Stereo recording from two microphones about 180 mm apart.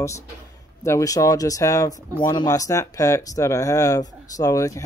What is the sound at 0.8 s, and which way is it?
Speech, 15° left (ahead or behind).